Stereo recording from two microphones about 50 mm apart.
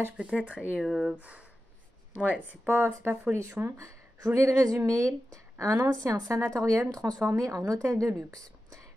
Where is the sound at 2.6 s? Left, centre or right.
Right.